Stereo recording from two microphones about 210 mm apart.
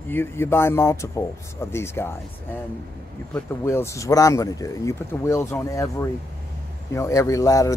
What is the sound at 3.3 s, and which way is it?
Speech, 10° left (ahead or behind).